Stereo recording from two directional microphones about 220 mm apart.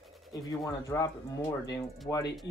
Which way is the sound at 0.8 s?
15° left (ahead or behind).